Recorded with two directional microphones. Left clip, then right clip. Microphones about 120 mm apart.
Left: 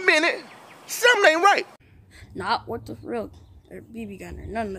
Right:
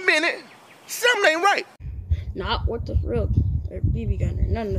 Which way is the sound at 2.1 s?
55° left (ahead or behind).